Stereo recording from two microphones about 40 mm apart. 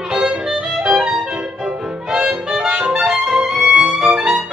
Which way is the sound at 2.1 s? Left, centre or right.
Centre.